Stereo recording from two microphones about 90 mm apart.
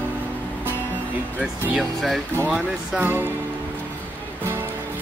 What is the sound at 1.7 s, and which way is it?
Speech, centre (ahead or behind).